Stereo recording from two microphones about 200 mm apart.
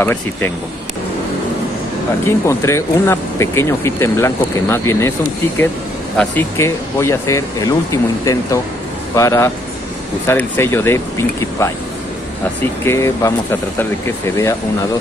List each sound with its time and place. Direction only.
0.0 s speech: 10° left (ahead or behind)
2.2 s speech: 15° left (ahead or behind)
6.1 s speech: 10° left (ahead or behind)
12.8 s speech: 15° left (ahead or behind)